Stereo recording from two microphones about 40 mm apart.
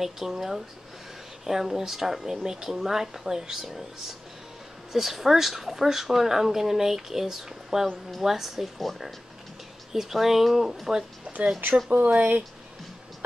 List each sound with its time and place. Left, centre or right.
0.0 s speech: centre
11.9 s speech: right